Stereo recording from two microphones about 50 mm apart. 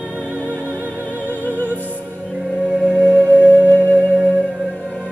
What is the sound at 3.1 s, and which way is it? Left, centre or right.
Music, right.